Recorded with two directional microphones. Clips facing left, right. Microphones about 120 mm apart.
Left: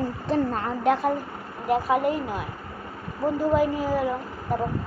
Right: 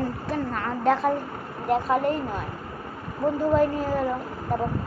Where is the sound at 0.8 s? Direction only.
5° left (ahead or behind).